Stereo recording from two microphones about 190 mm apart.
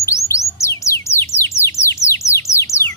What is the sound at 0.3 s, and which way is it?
Music, 15° left (ahead or behind).